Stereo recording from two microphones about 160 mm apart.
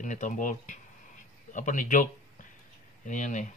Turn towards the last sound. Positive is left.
turn(degrees=50)  # may be behind; listen again after turning